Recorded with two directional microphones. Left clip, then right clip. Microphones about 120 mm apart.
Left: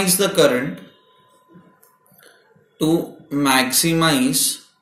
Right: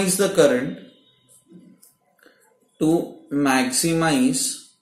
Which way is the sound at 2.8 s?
Centre (ahead or behind).